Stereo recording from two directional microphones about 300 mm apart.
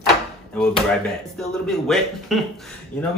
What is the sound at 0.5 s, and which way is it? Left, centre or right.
Speech, centre.